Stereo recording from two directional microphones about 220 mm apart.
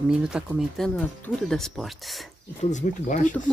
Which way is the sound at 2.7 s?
35° left (ahead or behind).